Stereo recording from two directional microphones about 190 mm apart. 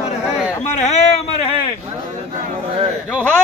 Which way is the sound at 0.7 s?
35° left (ahead or behind).